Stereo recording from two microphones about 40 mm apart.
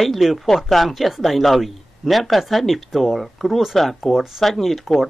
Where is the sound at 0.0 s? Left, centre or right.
Centre.